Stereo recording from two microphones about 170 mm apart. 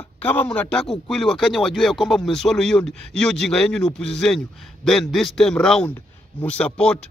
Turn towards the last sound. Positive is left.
turn(degrees=5)  # may be behind; listen again after turning